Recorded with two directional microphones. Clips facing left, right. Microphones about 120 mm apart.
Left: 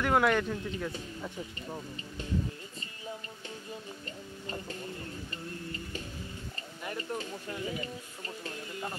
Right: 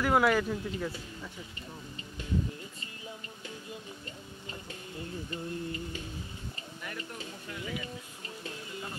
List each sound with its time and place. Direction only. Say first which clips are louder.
0.0 s speech: right 1 dB; 5° right (ahead or behind)
6.8 s a sound: left 4 dB; 30° left (ahead or behind)
7.2 s speech: left 4 dB; 35° left (ahead or behind)